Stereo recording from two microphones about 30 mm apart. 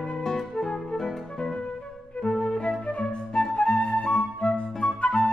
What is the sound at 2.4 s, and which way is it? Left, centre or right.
Music, left.